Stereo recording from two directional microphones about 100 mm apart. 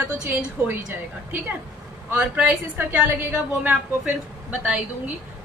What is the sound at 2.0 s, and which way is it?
A woman's voice, 15° right (ahead or behind).